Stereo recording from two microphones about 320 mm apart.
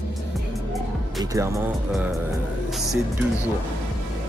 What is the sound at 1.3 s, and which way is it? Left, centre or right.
Speech, centre.